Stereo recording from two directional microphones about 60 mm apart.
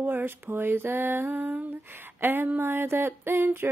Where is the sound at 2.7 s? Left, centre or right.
Right.